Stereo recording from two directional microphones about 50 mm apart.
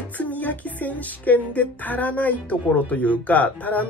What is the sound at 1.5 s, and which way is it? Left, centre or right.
Speech, left.